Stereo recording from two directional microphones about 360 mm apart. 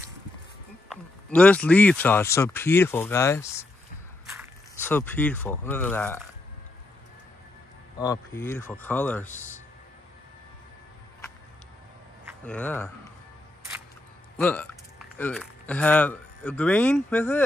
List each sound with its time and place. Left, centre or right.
0.8 s speech: centre
8.0 s speech: centre
9.3 s speech: centre
12.3 s speech: centre
14.4 s speech: centre